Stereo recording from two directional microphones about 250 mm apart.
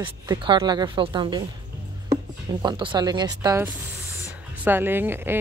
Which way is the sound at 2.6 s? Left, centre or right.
Centre.